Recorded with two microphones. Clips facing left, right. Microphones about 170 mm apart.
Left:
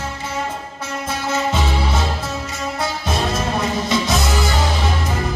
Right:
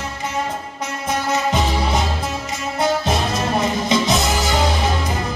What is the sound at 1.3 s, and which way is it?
Music, 15° right (ahead or behind).